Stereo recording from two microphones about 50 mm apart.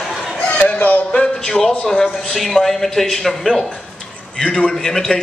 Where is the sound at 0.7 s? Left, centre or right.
Left.